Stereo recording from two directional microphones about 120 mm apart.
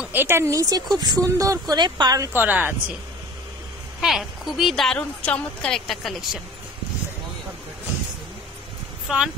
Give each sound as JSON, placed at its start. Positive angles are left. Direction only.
{"t": 0.0, "sound": "speech", "side_deg": -15}
{"t": 2.3, "sound": "speech", "side_deg": -15}
{"t": 4.0, "sound": "a woman's voice", "side_deg": 0}
{"t": 4.9, "sound": "a woman's voice", "side_deg": 10}
{"t": 9.1, "sound": "a woman's voice", "side_deg": -5}